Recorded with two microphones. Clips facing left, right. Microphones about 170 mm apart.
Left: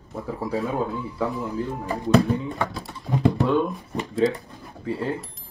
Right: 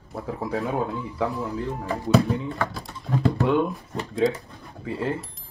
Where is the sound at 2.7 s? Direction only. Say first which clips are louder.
Left 1 dB; centre (ahead or behind).